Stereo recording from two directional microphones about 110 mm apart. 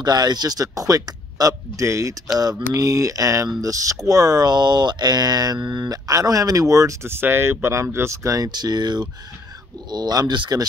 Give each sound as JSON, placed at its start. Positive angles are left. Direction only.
{"t": 0.0, "sound": "speech", "side_deg": -40}